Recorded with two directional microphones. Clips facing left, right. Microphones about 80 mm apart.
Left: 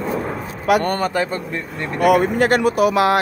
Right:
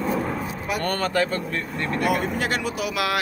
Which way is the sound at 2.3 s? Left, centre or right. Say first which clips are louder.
Left 10 dB; left.